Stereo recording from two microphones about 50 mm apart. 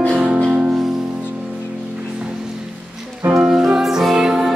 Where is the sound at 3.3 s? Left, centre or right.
Centre.